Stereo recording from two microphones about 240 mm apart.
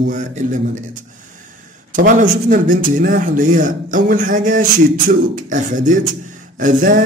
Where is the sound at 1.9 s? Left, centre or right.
Right.